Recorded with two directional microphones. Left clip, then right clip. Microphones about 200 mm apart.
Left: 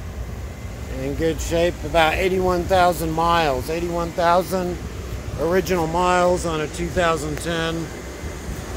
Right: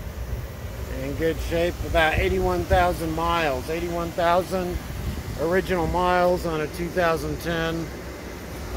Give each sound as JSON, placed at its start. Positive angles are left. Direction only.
{"t": 1.2, "sound": "speech", "side_deg": 25}